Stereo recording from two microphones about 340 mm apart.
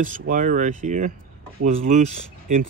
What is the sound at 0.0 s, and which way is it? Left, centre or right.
Speech, right.